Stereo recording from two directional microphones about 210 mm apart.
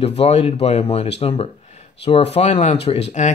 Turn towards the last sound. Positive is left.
turn(degrees=30)  # may be behind; listen again after turning